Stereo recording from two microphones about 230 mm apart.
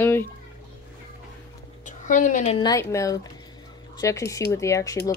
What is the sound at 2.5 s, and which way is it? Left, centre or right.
Speech, centre.